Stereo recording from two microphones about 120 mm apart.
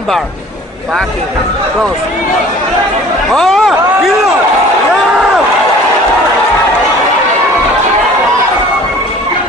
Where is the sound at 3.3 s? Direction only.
Centre (ahead or behind).